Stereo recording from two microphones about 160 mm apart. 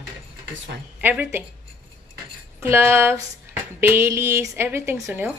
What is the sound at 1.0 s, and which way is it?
Speech, 10° right (ahead or behind).